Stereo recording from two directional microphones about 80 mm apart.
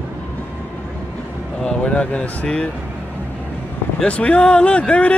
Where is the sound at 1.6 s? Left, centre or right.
Centre.